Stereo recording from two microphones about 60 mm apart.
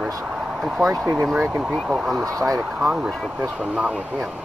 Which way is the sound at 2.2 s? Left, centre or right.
Right.